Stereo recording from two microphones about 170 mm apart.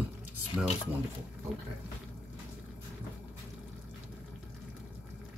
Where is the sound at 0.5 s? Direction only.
5° right (ahead or behind).